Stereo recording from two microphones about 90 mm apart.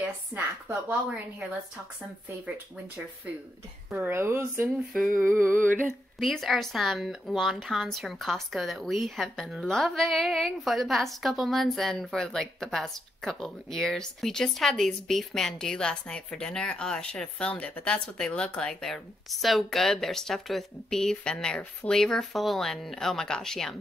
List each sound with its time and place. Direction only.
0.0 s speech: 20° right (ahead or behind)
3.9 s speech: 25° right (ahead or behind)
4.6 s speech: 10° right (ahead or behind)
5.1 s speech: 25° right (ahead or behind)
6.1 s a woman's voice: centre (ahead or behind)